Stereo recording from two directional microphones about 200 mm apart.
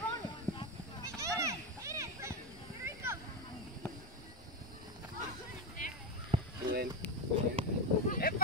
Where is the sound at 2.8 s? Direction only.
15° right (ahead or behind).